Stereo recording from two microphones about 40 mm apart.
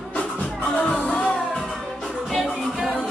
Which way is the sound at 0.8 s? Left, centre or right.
Left.